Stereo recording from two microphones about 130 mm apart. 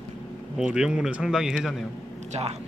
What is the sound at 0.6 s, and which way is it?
Speech, 5° right (ahead or behind).